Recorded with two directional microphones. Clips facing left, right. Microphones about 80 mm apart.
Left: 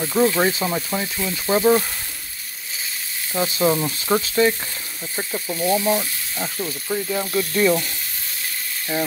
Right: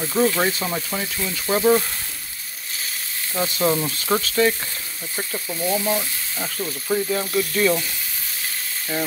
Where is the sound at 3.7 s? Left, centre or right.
Centre.